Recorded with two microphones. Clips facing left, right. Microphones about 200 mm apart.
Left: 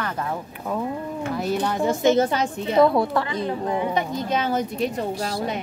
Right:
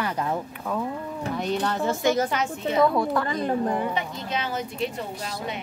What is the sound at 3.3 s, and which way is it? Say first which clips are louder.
Speech: right 1 dB; 45° right (ahead or behind).